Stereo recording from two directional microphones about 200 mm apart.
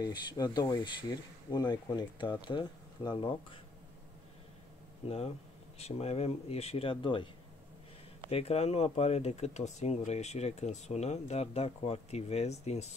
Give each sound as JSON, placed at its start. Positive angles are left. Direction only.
{"t": 0.0, "sound": "speech", "side_deg": 20}
{"t": 5.0, "sound": "speech", "side_deg": 30}
{"t": 8.3, "sound": "speech", "side_deg": 30}